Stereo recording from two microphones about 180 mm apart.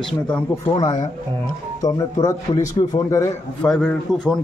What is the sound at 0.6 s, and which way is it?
Speech, 20° left (ahead or behind).